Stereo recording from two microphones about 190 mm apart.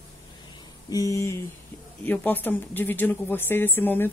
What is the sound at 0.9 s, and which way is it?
Speech, 20° left (ahead or behind).